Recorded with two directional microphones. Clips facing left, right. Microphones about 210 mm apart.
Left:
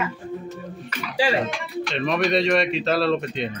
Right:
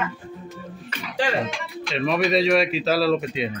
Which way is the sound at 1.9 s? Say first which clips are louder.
Right 1 dB; 5° right (ahead or behind).